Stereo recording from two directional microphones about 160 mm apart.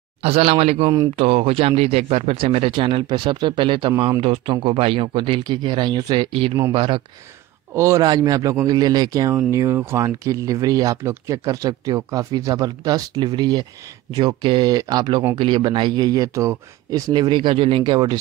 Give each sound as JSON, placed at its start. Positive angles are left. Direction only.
{"t": 0.2, "sound": "a man's voice", "side_deg": -35}
{"t": 7.7, "sound": "speech", "side_deg": -20}